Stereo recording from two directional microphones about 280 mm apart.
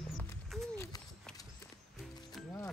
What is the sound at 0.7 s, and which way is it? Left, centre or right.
Run, centre.